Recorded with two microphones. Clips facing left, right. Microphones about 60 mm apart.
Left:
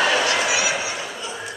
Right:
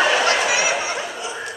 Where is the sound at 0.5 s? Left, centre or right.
Centre.